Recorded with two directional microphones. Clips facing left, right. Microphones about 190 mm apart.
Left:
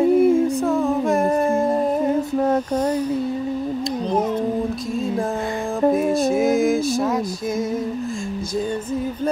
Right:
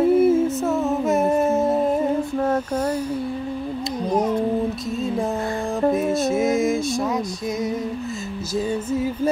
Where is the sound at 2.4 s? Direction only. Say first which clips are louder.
Left 2 dB; 15° left (ahead or behind).